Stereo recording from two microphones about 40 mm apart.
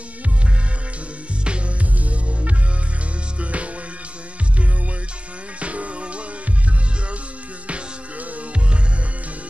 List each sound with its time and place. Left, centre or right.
3.3 s music: right
5.6 s music: right